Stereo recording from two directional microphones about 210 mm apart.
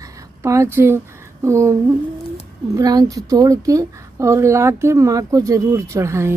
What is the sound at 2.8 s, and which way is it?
A woman's voice, 15° right (ahead or behind).